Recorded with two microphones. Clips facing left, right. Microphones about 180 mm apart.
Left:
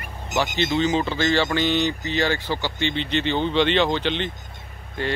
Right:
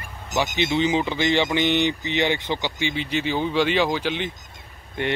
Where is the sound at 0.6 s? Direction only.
15° right (ahead or behind).